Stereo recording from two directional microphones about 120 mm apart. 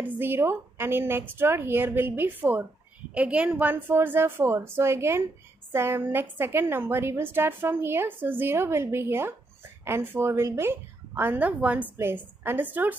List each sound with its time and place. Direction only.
0.0 s a woman's voice: 15° right (ahead or behind)